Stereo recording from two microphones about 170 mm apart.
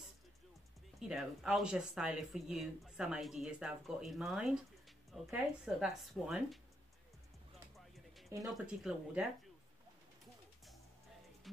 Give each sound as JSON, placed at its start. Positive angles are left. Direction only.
{"t": 0.9, "sound": "speech", "side_deg": -5}
{"t": 8.3, "sound": "speech", "side_deg": -20}
{"t": 8.6, "sound": "speech", "side_deg": -5}
{"t": 11.4, "sound": "music", "side_deg": 0}